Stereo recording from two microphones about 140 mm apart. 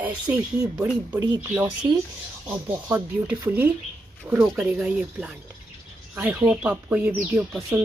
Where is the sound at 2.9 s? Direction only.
15° right (ahead or behind).